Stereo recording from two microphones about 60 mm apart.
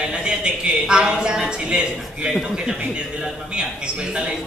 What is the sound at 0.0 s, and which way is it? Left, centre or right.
Speech, centre.